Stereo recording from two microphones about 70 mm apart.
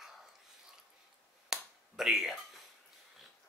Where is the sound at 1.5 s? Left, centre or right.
Centre.